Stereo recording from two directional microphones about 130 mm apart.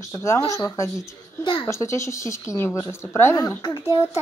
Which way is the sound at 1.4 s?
35° left (ahead or behind).